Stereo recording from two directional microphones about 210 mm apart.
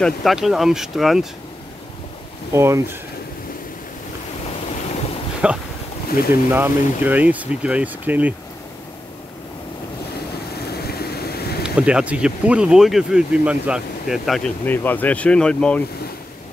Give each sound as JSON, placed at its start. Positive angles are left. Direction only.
{"t": 0.0, "sound": "speech", "side_deg": 0}
{"t": 2.5, "sound": "speech", "side_deg": -10}
{"t": 5.4, "sound": "speech", "side_deg": -5}
{"t": 6.1, "sound": "speech", "side_deg": 45}
{"t": 6.5, "sound": "speech", "side_deg": -10}
{"t": 10.5, "sound": "boat", "side_deg": 50}
{"t": 11.6, "sound": "speech", "side_deg": -5}